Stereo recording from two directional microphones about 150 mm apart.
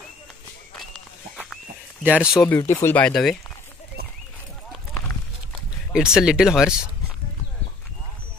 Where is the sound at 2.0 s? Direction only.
10° right (ahead or behind).